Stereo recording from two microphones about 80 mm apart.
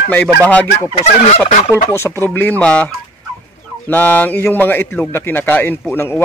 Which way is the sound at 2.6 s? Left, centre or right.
Centre.